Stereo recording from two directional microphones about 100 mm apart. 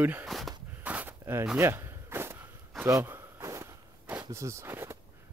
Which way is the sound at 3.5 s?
30° right (ahead or behind).